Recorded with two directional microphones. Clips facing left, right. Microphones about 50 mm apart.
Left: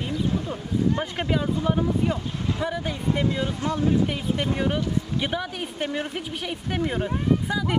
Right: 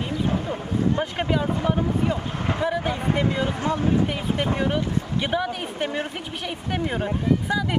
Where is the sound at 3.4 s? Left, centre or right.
Right.